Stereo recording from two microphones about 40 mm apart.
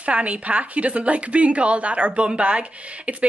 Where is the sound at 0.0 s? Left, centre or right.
Right.